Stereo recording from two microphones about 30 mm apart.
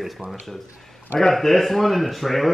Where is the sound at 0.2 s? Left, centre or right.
Right.